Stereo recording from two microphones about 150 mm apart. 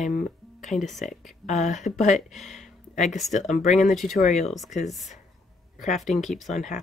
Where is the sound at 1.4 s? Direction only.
50° left (ahead or behind).